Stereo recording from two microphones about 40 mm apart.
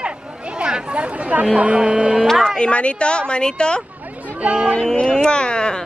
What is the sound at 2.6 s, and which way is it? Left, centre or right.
A woman's voice, left.